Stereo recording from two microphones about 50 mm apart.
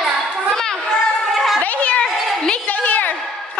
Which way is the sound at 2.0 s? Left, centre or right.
Centre.